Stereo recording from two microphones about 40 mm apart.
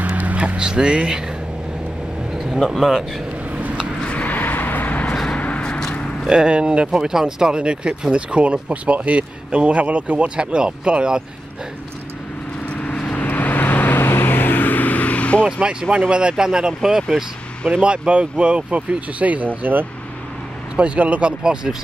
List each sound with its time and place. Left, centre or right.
0.0 s a sound: right
0.6 s speech: right
2.8 s speech: centre
4.0 s a sound: left
4.3 s vehicle: left
5.3 s a sound: left
6.2 s speech: right
6.9 s speech: centre
12.7 s vehicle: left
13.2 s vehicle: left
15.6 s speech: right
17.7 s speech: right
20.7 s speech: right
21.3 s speech: centre